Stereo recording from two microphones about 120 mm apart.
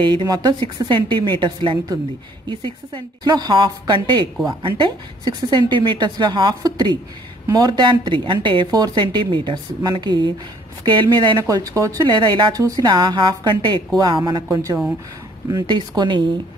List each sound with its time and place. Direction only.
0.0 s a woman's voice: 40° right (ahead or behind)
14.5 s speech: 25° right (ahead or behind)